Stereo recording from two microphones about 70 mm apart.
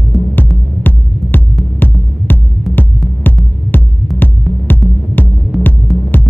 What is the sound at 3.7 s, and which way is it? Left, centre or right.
Music, left.